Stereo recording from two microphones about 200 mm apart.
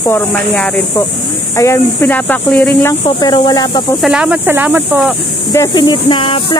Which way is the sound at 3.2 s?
20° left (ahead or behind).